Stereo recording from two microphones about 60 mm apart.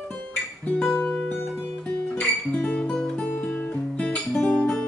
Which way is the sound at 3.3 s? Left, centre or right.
Left.